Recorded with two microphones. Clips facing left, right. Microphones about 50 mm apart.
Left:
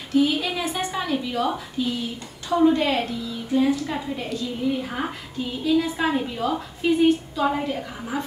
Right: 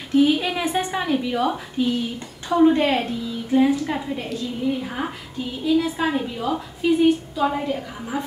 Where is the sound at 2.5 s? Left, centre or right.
Right; by 8.2 s centre.